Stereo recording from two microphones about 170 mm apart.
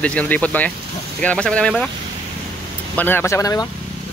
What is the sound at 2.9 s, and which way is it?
Speech, 10° left (ahead or behind).